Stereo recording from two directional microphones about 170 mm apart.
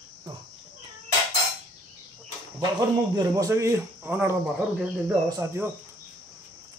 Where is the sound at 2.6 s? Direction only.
25° right (ahead or behind).